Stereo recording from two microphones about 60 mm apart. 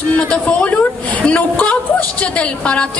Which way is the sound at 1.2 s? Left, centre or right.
Left.